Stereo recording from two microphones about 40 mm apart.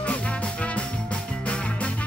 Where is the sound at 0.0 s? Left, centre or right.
Left.